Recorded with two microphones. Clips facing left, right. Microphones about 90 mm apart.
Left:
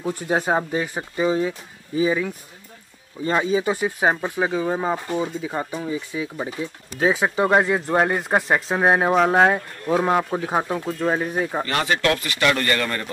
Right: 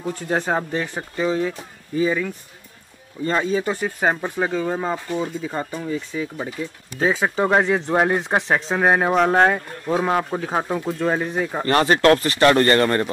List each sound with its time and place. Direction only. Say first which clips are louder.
0.0 s speech: left 1 dB; 10° left (ahead or behind)
11.6 s speech: right 9 dB; 40° right (ahead or behind)